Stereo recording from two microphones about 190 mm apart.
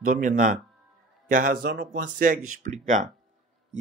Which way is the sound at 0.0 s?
45° right (ahead or behind).